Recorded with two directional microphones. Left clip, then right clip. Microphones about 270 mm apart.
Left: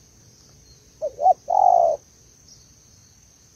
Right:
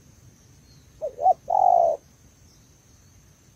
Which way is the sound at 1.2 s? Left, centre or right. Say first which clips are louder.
Left 2 dB; centre.